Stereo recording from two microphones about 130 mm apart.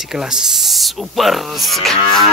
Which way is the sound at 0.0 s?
5° right (ahead or behind).